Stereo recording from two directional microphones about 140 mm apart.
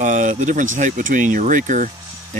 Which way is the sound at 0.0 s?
65° right (ahead or behind).